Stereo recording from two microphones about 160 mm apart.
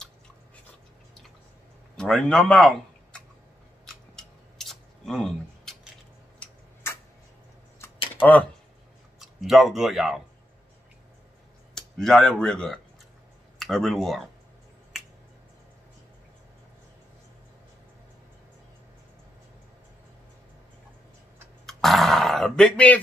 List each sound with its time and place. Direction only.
2.0 s a man's voice: 5° left (ahead or behind)
3.8 s scissors: centre (ahead or behind)
6.4 s tick-tock: 15° left (ahead or behind)
7.8 s a sound: 10° left (ahead or behind)
9.2 s speech: centre (ahead or behind)
11.7 s speech: centre (ahead or behind)
21.6 s grunt: centre (ahead or behind)